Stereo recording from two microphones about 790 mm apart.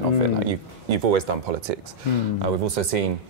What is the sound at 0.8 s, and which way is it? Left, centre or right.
Speech, right.